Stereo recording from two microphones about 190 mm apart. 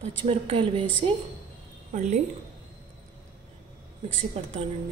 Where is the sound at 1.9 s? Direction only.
40° right (ahead or behind).